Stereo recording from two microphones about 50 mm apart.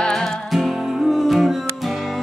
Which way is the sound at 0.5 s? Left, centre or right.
Centre.